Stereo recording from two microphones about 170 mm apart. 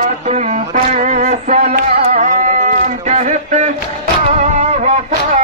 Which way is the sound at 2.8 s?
45° right (ahead or behind).